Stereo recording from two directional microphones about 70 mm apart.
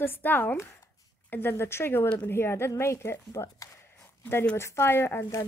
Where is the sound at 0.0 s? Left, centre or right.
Left.